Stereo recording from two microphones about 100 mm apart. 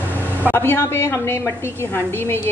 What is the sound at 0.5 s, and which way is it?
A woman's voice, 25° left (ahead or behind).